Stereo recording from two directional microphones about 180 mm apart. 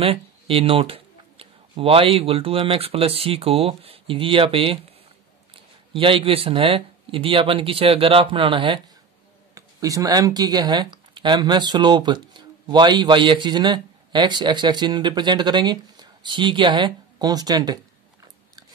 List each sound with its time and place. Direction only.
0.0 s speech: 30° right (ahead or behind)